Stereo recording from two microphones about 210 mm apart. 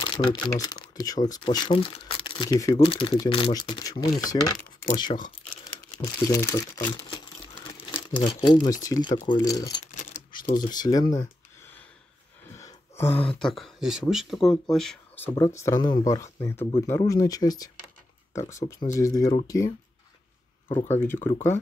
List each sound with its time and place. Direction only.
0.0 s speech: 25° left (ahead or behind)
6.2 s crumpling: 15° left (ahead or behind)
7.7 s crumpling: 10° left (ahead or behind)
8.2 s speech: 20° left (ahead or behind)
10.4 s speech: 40° left (ahead or behind)
10.7 s speech: 20° left (ahead or behind)
12.4 s a sound: 15° left (ahead or behind)
13.3 s speech: centre (ahead or behind)
20.7 s speech: 10° left (ahead or behind)